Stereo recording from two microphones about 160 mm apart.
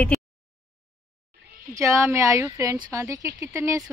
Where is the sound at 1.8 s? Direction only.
20° right (ahead or behind).